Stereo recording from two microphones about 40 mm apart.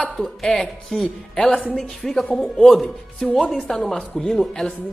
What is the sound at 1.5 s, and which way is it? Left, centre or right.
Speech, left.